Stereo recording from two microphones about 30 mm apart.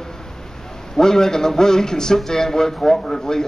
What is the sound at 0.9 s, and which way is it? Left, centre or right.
A man's voice, centre.